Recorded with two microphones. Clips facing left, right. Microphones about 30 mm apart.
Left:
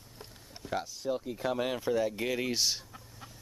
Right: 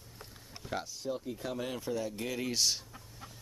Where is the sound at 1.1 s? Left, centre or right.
Centre.